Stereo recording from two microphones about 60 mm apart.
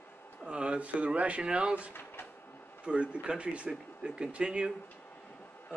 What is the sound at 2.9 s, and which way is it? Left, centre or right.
Speech, centre.